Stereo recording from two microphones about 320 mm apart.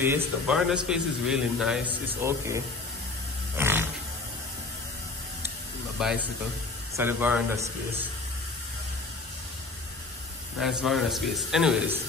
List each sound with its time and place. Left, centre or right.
0.0 s a man's voice: centre
3.5 s a sound: centre
5.9 s a man's voice: centre
10.6 s a man's voice: centre